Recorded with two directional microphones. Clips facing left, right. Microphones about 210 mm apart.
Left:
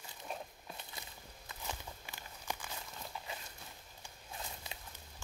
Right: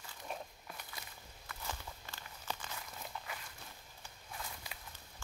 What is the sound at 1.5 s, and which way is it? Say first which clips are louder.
Walk: even; 15° left (ahead or behind).